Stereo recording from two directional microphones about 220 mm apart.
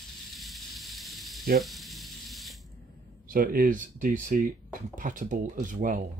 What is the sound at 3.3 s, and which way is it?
Speech, 40° right (ahead or behind).